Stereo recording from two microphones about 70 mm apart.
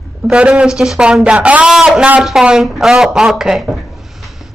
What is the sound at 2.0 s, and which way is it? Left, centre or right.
A woman's voice, centre.